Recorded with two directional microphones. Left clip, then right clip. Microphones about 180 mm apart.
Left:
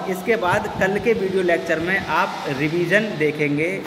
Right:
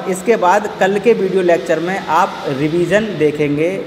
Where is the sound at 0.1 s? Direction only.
25° right (ahead or behind).